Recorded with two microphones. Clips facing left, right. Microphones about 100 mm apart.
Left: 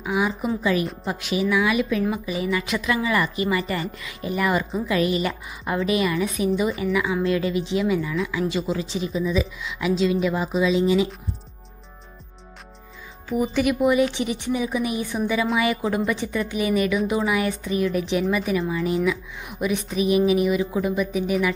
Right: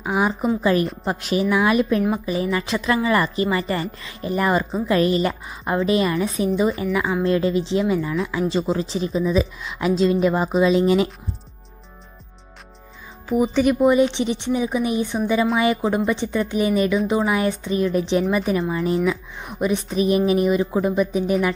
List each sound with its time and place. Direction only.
0.0 s a woman's voice: 40° right (ahead or behind)
13.3 s speech: centre (ahead or behind)
13.7 s a woman's voice: 30° right (ahead or behind)